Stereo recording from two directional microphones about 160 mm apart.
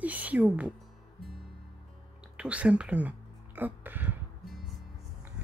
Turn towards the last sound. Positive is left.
turn(degrees=0)  # may be behind; listen again after turning